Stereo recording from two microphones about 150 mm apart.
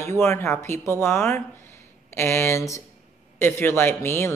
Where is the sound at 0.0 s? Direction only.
15° left (ahead or behind).